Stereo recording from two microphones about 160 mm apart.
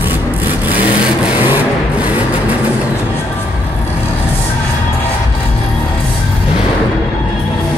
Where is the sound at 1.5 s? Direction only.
10° right (ahead or behind).